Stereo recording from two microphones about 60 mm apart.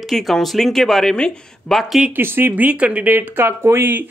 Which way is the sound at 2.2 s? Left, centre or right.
Right.